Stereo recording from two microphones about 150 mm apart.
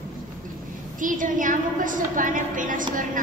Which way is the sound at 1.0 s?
60° right (ahead or behind).